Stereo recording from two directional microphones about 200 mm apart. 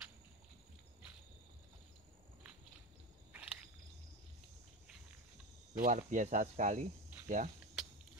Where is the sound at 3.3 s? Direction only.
5° right (ahead or behind).